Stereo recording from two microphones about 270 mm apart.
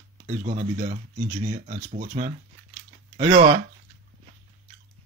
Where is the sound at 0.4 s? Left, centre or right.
Right.